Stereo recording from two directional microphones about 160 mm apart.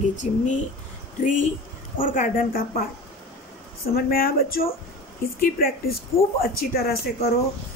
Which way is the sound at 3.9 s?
65° left (ahead or behind).